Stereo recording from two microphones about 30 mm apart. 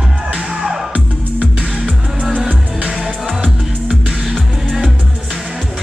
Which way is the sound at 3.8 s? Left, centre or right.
Centre.